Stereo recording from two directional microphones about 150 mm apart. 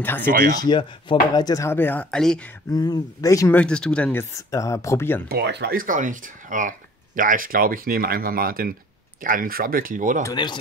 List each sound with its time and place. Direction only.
0.2 s speech: 70° right (ahead or behind)
0.6 s speech: 30° left (ahead or behind); by 2.4 s 5° left (ahead or behind)
2.7 s speech: 25° left (ahead or behind)
3.5 s speech: 5° left (ahead or behind)
5.3 s speech: 90° right; by 10.2 s 60° right (ahead or behind)
10.3 s speech: 30° left (ahead or behind)